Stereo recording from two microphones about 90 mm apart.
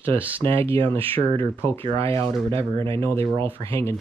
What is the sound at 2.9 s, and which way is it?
Speech, 30° left (ahead or behind).